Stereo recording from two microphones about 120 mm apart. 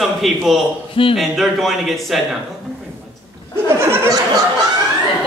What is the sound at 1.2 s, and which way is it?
Speech, centre (ahead or behind).